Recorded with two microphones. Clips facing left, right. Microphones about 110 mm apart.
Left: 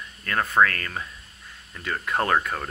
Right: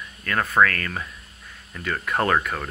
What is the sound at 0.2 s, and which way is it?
Speech, 25° left (ahead or behind).